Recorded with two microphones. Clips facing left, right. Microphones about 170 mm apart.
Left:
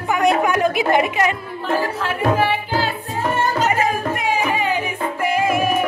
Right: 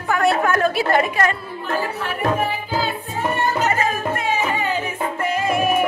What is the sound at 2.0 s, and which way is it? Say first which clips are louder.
Tabla: left 3 dB; 85° left.